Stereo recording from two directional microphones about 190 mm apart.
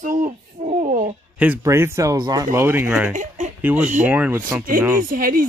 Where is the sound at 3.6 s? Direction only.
10° right (ahead or behind).